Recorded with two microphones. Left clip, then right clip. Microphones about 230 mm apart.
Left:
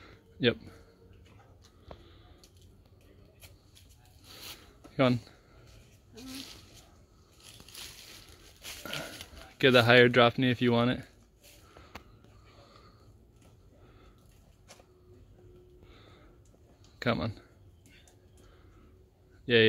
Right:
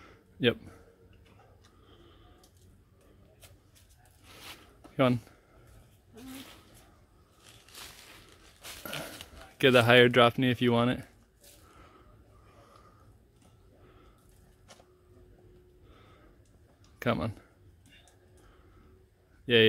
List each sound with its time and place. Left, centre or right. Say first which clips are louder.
0.0 s a sound: even; centre
4.3 s zipper: left 1 dB; centre
7.8 s crushing: left 1 dB; right
9.6 s speech: even; centre
17.0 s speech: even; centre
19.5 s speech: right 1 dB; centre